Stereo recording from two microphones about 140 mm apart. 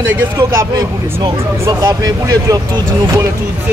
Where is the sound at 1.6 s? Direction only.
25° right (ahead or behind).